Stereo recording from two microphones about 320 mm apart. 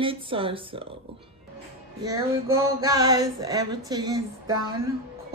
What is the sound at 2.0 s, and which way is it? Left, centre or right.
Speech, centre.